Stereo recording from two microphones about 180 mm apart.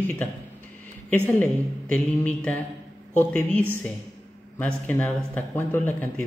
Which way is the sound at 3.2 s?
10° left (ahead or behind).